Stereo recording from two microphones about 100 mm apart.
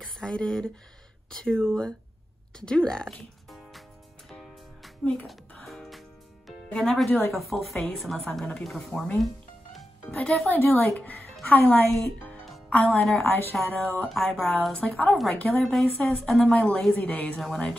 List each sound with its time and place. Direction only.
0.2 s a woman's voice: 5° left (ahead or behind)
4.3 s music: centre (ahead or behind)
5.0 s speech: 5° left (ahead or behind)
5.5 s music: 5° left (ahead or behind)
7.1 s speech: 25° left (ahead or behind)
7.3 s a woman's voice: centre (ahead or behind)
9.2 s music: centre (ahead or behind)
10.5 s a woman's voice: 20° left (ahead or behind)
13.2 s speech: 25° left (ahead or behind)
13.6 s a woman's voice: centre (ahead or behind)
15.7 s speech: centre (ahead or behind)
16.4 s a woman's voice: 10° left (ahead or behind)